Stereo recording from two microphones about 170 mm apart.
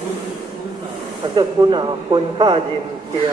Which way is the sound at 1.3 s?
25° right (ahead or behind).